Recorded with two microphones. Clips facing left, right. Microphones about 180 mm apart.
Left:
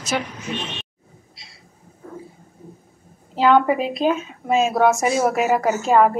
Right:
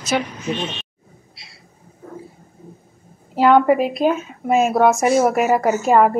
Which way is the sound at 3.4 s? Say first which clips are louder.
Right 3 dB; 10° right (ahead or behind).